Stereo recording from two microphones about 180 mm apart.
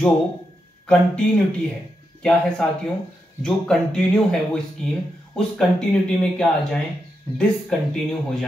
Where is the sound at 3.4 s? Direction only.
5° left (ahead or behind).